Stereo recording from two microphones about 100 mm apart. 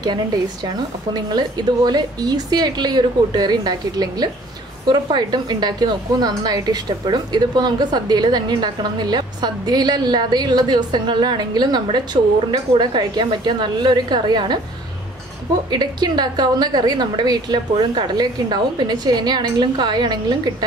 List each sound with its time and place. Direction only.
1.1 s a woman's voice: 45° right (ahead or behind)
15.7 s a woman's voice: 45° right (ahead or behind)